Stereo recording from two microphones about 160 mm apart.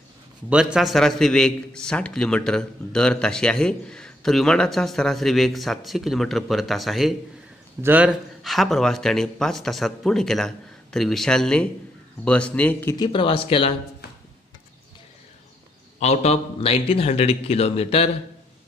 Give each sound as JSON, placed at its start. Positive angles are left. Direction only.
{"t": 0.5, "sound": "a man's voice", "side_deg": -5}
{"t": 12.9, "sound": "a man's voice", "side_deg": 30}
{"t": 16.0, "sound": "a man's voice", "side_deg": 45}